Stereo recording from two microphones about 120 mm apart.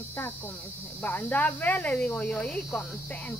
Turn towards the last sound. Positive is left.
turn(degrees=15)  # may be behind; listen again after turning